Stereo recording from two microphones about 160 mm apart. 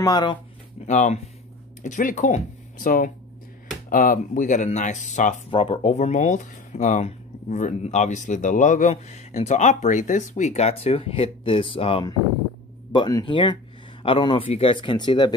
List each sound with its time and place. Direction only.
0.0 s speech: 25° left (ahead or behind)
0.8 s speech: 50° left (ahead or behind)
5.5 s speech: 35° left (ahead or behind)